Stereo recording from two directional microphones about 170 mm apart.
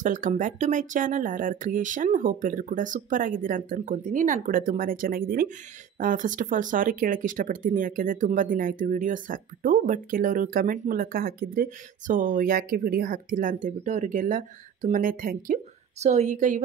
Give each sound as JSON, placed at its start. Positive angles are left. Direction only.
{"t": 0.0, "sound": "speech", "side_deg": -50}